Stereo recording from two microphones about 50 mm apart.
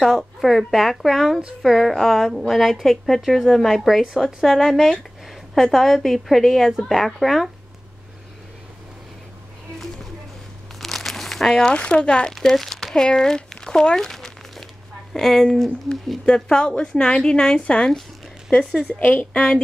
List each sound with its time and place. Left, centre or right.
0.0 s a woman's voice: centre
10.8 s crumpling: centre
11.7 s speech: left
12.4 s a woman's voice: centre; by 17.9 s left
18.5 s speech: centre
19.3 s a woman's voice: centre